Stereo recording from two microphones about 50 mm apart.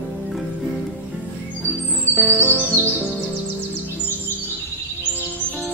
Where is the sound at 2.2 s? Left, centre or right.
Right.